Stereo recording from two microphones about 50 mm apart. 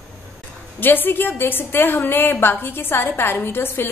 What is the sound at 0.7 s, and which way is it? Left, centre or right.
A woman's voice, left.